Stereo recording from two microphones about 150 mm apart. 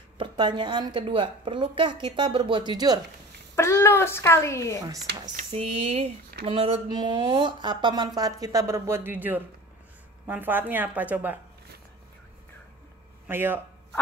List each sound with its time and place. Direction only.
0.2 s a woman's voice: 30° right (ahead or behind)
3.5 s a child's voice: 15° left (ahead or behind)
5.3 s speech: 50° right (ahead or behind); by 11.3 s 10° right (ahead or behind)
13.3 s speech: 15° right (ahead or behind)